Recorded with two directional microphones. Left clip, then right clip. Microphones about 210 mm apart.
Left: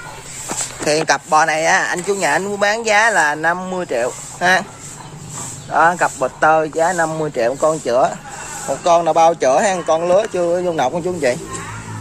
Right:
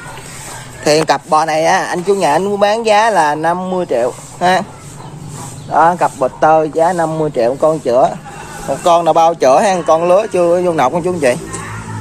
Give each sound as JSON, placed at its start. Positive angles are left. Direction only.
{"t": 0.8, "sound": "speech", "side_deg": -5}
{"t": 5.7, "sound": "speech", "side_deg": 5}